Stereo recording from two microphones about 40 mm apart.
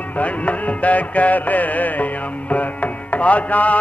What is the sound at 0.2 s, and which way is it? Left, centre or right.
Music, left.